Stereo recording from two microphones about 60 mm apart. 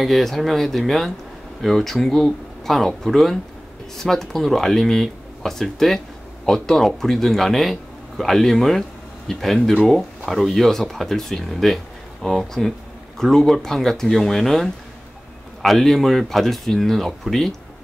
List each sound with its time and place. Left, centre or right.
0.0 s speech: centre